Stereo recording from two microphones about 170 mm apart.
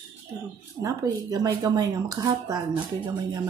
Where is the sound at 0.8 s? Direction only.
20° right (ahead or behind).